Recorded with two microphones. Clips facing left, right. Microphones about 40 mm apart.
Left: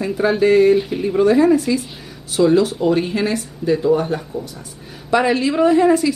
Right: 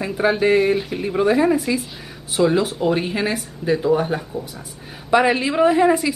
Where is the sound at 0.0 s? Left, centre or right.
Centre.